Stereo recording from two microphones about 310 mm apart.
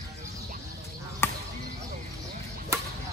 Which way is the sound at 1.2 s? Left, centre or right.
Centre.